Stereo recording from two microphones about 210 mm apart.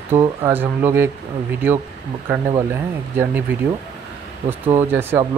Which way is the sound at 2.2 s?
10° right (ahead or behind).